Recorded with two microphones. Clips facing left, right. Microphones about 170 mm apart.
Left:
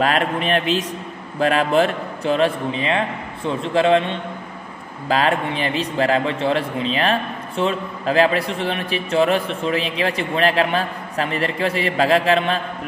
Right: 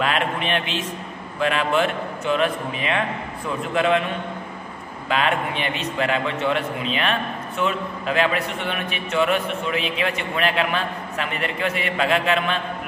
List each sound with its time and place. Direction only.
0.0 s a man's voice: 40° left (ahead or behind)